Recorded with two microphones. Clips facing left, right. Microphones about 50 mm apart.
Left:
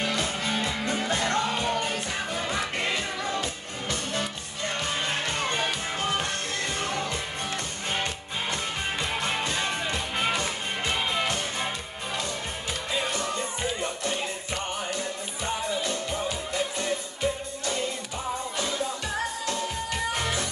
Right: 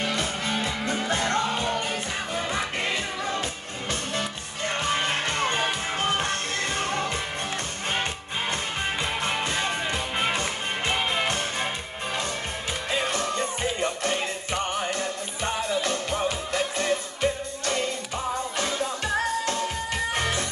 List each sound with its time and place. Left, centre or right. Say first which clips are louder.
1.2 s music: right 1 dB; centre
1.7 s music: even; centre
4.6 s music: right 4 dB; right
9.9 s music: right 1 dB; centre
10.3 s music: right 1 dB; right
13.0 s music: right 3 dB; right